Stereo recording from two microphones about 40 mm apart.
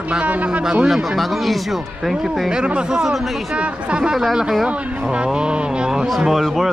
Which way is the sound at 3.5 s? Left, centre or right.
Right.